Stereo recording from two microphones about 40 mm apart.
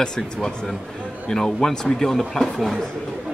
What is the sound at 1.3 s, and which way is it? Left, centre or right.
Speech, centre.